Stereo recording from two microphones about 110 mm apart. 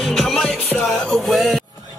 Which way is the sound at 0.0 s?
Centre (ahead or behind).